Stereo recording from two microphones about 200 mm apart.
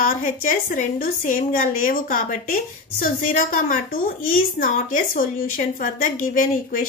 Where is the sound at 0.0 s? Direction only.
40° left (ahead or behind).